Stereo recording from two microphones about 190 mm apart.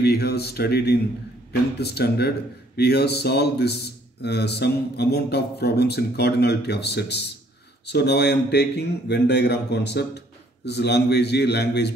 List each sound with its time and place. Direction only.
0.0 s speech: 55° left (ahead or behind)